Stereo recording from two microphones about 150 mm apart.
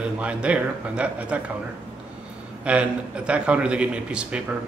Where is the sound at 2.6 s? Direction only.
10° right (ahead or behind).